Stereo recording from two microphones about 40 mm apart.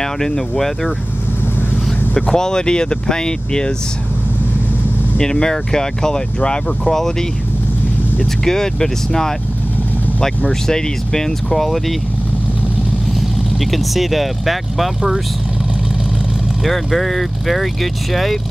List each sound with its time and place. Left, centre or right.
0.0 s speech: centre
2.3 s speech: centre
5.1 s speech: centre
6.8 s speech: centre
8.5 s speech: centre
13.6 s speech: centre
16.6 s speech: centre